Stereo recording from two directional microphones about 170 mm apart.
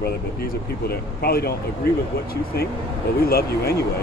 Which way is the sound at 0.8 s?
65° left (ahead or behind).